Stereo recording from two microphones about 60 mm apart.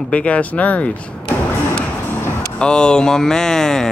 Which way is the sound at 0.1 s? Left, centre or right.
Left.